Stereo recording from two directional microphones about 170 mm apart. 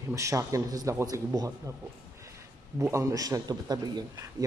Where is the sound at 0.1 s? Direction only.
20° right (ahead or behind).